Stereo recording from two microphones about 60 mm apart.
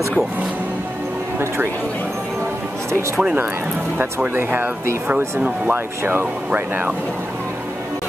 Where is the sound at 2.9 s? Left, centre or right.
Right.